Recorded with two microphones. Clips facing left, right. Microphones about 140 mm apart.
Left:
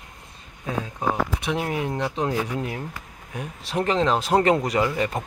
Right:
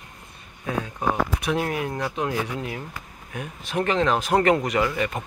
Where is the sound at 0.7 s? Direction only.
25° left (ahead or behind).